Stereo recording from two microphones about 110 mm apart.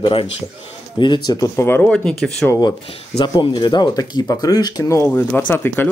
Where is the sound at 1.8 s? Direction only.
10° left (ahead or behind).